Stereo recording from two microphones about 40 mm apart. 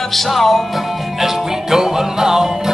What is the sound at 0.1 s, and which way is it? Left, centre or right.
Music, centre.